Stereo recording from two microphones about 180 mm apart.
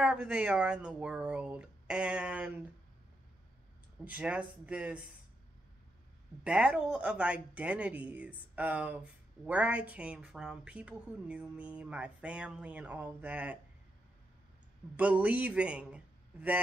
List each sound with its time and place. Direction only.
0.0 s speech: 5° right (ahead or behind)
4.0 s speech: 10° right (ahead or behind)
6.4 s speech: 5° right (ahead or behind)
15.0 s speech: 10° right (ahead or behind)